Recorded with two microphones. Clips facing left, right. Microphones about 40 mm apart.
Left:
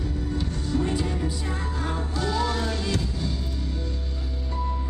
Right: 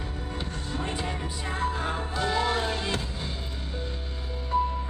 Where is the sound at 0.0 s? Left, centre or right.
Right.